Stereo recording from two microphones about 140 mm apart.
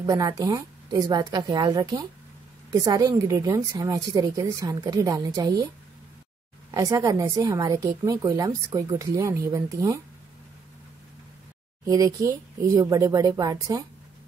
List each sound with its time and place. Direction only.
0.0 s a woman's voice: 25° right (ahead or behind)
6.7 s a woman's voice: 25° right (ahead or behind)
11.8 s a woman's voice: 25° right (ahead or behind)